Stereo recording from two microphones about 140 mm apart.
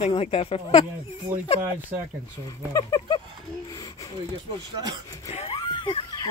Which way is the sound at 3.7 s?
25° left (ahead or behind).